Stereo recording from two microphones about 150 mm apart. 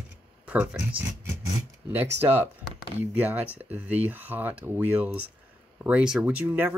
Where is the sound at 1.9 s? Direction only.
15° right (ahead or behind).